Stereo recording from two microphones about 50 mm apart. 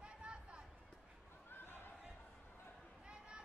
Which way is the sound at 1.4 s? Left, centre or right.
Left.